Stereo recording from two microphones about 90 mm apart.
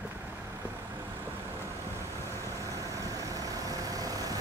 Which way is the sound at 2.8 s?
40° right (ahead or behind).